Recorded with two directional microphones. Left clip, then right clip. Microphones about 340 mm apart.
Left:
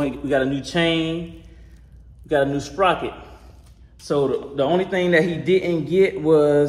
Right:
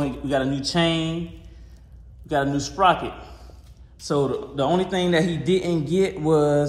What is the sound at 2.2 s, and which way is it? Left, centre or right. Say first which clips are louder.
Speech: left 3 dB; centre.